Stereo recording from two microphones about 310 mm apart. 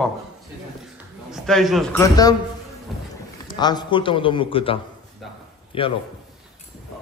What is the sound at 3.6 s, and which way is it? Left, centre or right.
A man's voice, centre.